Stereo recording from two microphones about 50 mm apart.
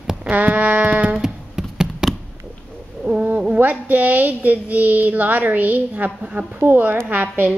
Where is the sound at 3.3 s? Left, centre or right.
Right.